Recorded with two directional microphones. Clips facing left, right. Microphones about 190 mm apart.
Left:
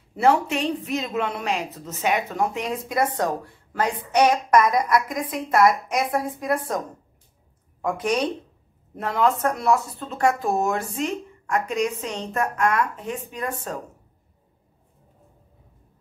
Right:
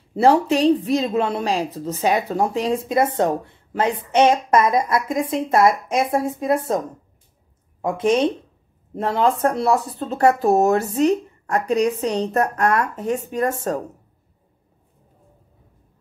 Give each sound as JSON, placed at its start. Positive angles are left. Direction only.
{"t": 0.1, "sound": "speech", "side_deg": -30}
{"t": 7.8, "sound": "speech", "side_deg": -25}